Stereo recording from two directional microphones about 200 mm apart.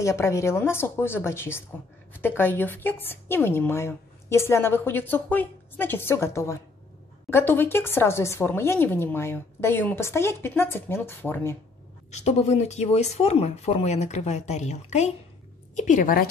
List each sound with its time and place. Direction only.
0.0 s a woman's voice: 15° left (ahead or behind)
12.2 s speech: 35° left (ahead or behind)